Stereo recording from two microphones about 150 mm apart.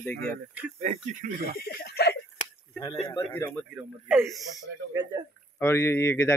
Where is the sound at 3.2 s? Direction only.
15° left (ahead or behind).